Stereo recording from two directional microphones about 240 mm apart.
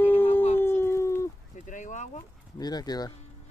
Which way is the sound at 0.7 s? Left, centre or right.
Centre.